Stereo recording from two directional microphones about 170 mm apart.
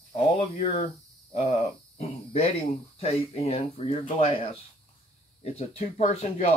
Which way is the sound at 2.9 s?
35° left (ahead or behind).